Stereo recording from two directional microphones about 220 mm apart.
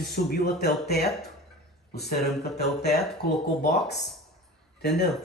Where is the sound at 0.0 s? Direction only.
45° left (ahead or behind).